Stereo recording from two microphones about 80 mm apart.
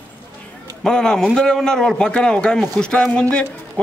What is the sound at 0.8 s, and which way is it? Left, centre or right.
A man's voice, centre.